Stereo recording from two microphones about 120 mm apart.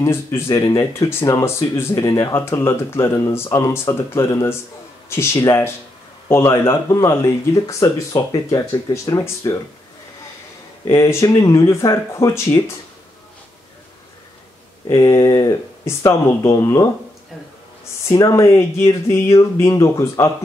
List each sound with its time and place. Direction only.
0.0 s speech: 25° left (ahead or behind)
10.9 s speech: 25° left (ahead or behind)
14.9 s speech: 25° left (ahead or behind)
18.2 s speech: 25° left (ahead or behind)